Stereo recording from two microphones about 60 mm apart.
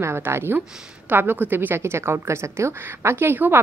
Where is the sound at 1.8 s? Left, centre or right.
Right.